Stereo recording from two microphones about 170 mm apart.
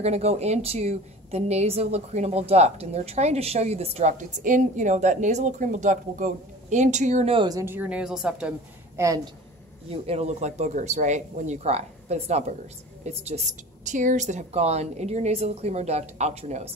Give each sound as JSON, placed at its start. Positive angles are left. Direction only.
{"t": 0.0, "sound": "a woman's voice", "side_deg": -40}
{"t": 7.4, "sound": "a woman's voice", "side_deg": -15}
{"t": 9.0, "sound": "speech", "side_deg": -20}
{"t": 9.8, "sound": "a woman's voice", "side_deg": -35}